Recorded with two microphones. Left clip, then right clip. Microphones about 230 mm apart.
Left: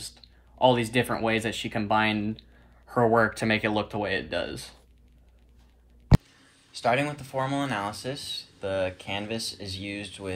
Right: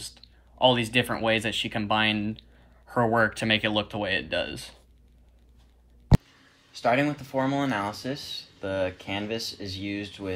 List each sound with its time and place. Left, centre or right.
0.8 s speech: right
6.1 s a sound: centre
6.8 s speech: left